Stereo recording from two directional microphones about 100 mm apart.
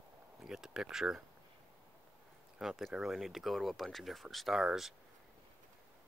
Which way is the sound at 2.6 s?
Centre (ahead or behind).